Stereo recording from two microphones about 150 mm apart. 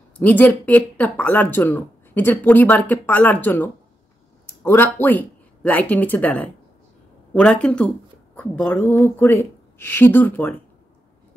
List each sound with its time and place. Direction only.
0.2 s speech: 10° left (ahead or behind)